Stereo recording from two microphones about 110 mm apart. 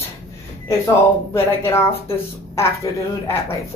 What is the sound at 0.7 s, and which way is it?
Speech, 25° left (ahead or behind).